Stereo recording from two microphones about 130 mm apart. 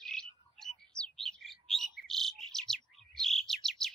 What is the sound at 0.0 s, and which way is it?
Bird, 5° left (ahead or behind).